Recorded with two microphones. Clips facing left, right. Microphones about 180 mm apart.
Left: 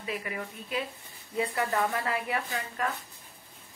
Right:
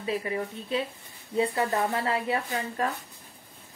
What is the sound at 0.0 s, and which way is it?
Speech, 30° right (ahead or behind).